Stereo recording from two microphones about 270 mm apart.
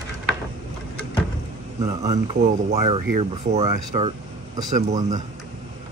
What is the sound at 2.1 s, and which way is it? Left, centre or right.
Speech, right.